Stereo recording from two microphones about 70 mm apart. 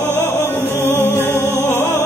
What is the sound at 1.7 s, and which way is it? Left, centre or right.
Music, left.